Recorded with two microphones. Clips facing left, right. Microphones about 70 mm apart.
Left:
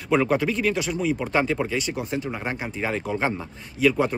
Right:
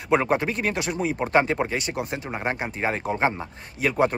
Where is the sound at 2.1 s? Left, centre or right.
Right.